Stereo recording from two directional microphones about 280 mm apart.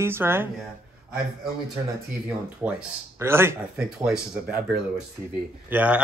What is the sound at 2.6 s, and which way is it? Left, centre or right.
Speech, centre.